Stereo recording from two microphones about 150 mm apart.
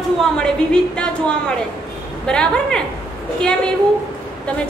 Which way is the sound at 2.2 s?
5° left (ahead or behind).